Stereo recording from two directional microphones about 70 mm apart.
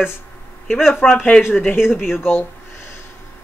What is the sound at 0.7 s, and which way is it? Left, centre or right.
Speech, centre.